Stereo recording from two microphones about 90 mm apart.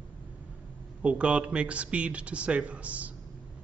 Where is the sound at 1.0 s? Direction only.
10° right (ahead or behind).